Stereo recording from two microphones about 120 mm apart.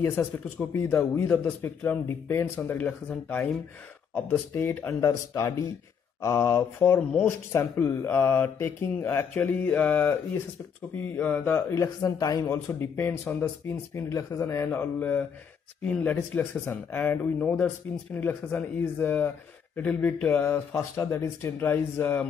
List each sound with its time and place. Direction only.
0.0 s speech: 20° left (ahead or behind)